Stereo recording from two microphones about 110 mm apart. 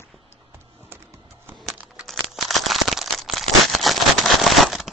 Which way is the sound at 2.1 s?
Centre (ahead or behind).